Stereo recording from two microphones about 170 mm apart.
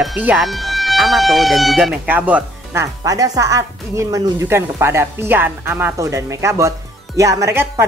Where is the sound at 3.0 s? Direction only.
20° right (ahead or behind).